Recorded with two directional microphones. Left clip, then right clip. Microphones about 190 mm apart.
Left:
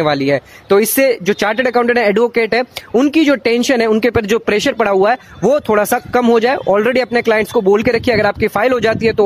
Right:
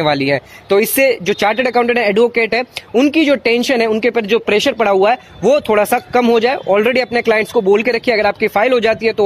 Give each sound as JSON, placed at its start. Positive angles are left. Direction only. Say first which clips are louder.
{"t": 0.0, "sound": "speech", "louder": "even", "side_deg": 15}
{"t": 0.7, "sound": "speech", "louder": "even", "side_deg": 25}